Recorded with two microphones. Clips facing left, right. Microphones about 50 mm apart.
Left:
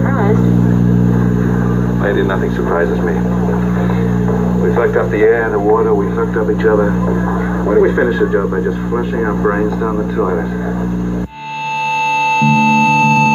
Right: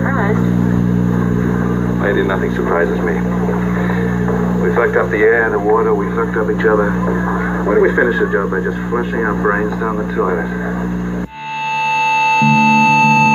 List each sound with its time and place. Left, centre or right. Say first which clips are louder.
2.0 s speech: even; centre
5.2 s speech: left 1 dB; centre
11.9 s music: right 1 dB; centre